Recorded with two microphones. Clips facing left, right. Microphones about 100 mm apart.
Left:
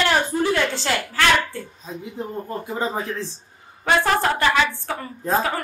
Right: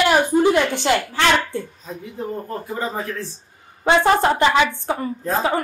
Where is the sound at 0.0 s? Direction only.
15° right (ahead or behind).